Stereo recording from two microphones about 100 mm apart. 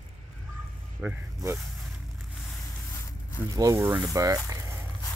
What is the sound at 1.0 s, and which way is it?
Speech, 20° right (ahead or behind).